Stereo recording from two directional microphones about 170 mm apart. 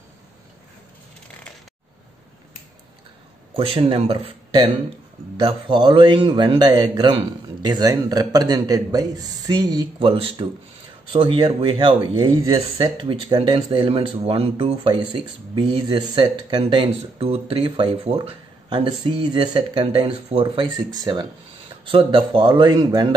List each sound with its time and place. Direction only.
3.5 s speech: 35° right (ahead or behind)